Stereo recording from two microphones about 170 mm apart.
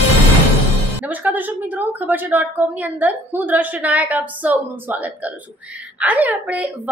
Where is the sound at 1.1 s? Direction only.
10° right (ahead or behind).